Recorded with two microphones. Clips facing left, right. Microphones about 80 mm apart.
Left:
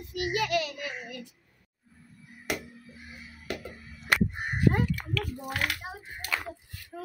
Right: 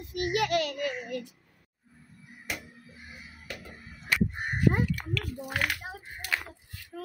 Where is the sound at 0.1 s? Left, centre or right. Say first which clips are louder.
Right 1 dB; right.